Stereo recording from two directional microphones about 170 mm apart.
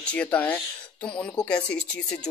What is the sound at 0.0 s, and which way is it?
Speech, 5° left (ahead or behind).